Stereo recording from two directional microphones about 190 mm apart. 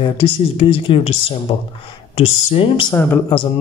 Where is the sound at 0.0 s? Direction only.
30° left (ahead or behind).